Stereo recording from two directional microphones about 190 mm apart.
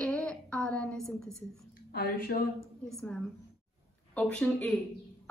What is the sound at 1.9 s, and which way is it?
Speech, 50° left (ahead or behind).